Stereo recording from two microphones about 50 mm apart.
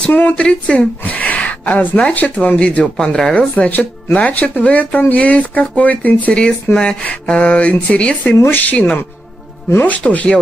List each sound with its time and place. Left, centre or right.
0.1 s speech: left
0.4 s a woman's voice: left
2.8 s speech: centre
3.3 s speech: left
8.5 s speech: left
8.7 s speech: left